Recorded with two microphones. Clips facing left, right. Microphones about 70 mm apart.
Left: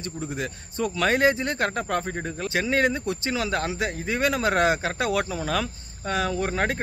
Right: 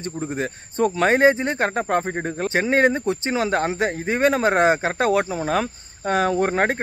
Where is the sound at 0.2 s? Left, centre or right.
Right.